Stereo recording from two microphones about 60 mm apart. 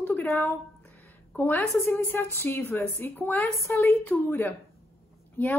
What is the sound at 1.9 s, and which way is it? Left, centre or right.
A woman's voice, left.